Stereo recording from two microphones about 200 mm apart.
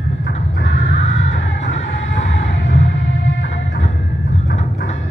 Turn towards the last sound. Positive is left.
turn(degrees=70)  # may be behind; listen again after turning